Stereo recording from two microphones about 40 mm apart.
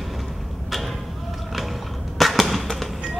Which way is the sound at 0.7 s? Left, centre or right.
Centre.